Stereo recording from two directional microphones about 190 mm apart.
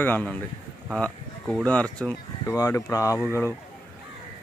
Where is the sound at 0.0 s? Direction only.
10° left (ahead or behind).